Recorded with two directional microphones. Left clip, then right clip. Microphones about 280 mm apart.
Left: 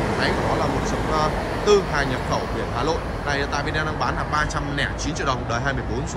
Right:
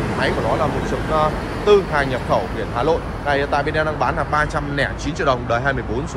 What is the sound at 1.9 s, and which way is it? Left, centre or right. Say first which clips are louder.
Speech: right 5 dB; centre.